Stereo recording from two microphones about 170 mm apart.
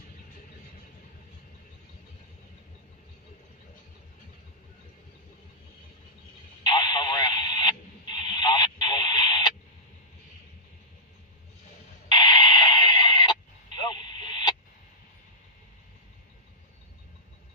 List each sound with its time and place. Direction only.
6.6 s radio: 25° left (ahead or behind)
12.1 s radio: 25° left (ahead or behind)